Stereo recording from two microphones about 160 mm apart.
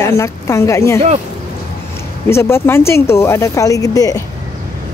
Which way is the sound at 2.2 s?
15° left (ahead or behind).